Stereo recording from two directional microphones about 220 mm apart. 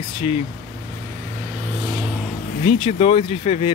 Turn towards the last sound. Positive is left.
turn(degrees=25)  # may be behind; listen again after turning